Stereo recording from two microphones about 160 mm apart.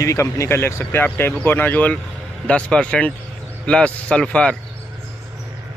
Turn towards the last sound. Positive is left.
turn(degrees=5)  # may be behind; listen again after turning